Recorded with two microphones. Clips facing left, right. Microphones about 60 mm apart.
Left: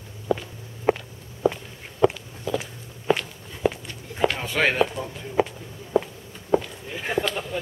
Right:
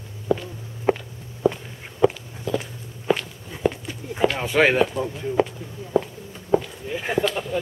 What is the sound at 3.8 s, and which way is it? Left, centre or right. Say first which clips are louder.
Chop: right 2 dB; centre.